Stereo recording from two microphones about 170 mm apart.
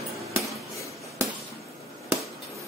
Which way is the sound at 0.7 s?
15° left (ahead or behind).